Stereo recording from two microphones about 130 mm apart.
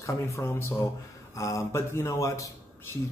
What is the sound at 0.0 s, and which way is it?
Speech, 20° left (ahead or behind).